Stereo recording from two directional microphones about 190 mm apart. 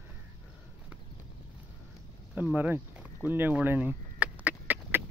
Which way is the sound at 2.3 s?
10° right (ahead or behind).